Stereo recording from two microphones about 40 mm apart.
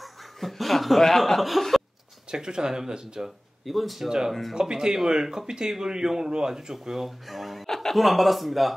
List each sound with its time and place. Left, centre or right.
0.0 s speech: centre
2.3 s speech: centre
3.3 s a man's voice: centre
4.6 s speech: centre
7.6 s chuckle: centre
8.0 s a man's voice: centre